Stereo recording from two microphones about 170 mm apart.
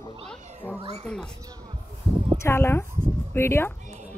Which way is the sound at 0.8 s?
35° right (ahead or behind).